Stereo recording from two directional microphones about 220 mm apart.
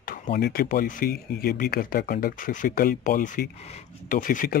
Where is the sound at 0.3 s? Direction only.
45° left (ahead or behind).